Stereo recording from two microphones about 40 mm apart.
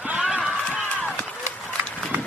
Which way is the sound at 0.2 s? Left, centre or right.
Right.